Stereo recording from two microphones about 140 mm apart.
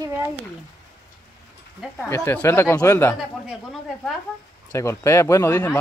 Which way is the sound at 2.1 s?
15° left (ahead or behind).